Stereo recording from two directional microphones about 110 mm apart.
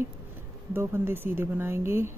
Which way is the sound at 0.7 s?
20° right (ahead or behind).